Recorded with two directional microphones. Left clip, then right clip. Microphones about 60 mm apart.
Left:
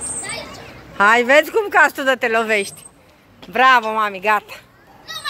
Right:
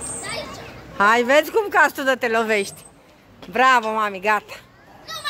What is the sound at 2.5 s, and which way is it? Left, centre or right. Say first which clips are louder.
Speech: left 2 dB; right.